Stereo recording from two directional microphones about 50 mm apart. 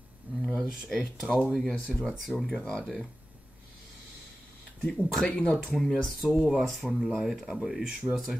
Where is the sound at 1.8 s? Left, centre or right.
Left.